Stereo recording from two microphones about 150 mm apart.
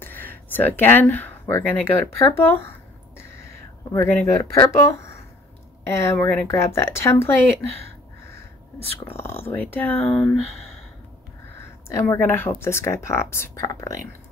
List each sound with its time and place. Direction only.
0.0 s speech: 15° left (ahead or behind)
3.2 s a sound: 20° left (ahead or behind)
4.6 s speech: 20° left (ahead or behind)
9.0 s speech: 15° left (ahead or behind)
11.9 s speech: 15° left (ahead or behind)